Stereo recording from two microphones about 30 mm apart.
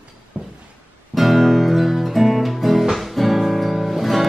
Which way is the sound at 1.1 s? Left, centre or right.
Centre.